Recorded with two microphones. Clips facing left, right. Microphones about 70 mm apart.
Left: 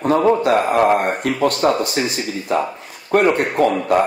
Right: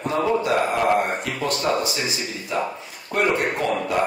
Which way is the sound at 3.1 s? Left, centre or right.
Left.